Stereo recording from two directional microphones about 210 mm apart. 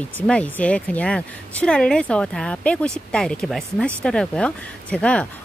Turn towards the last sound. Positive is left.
turn(degrees=5)  # may be behind; listen again after turning